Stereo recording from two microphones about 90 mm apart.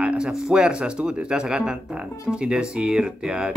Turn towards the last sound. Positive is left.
turn(degrees=-10)  # may be behind; listen again after turning